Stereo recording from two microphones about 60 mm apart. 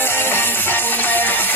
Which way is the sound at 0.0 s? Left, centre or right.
Left.